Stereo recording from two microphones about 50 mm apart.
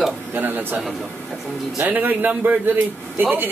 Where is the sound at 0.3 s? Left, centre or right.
Right.